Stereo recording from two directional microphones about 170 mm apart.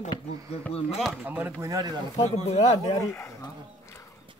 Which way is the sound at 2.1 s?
40° left (ahead or behind).